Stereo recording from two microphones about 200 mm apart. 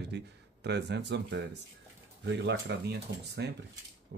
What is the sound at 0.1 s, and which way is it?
Speech, 55° right (ahead or behind).